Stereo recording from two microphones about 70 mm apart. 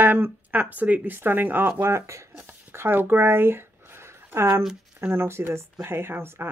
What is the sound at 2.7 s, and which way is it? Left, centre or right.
Speech, right.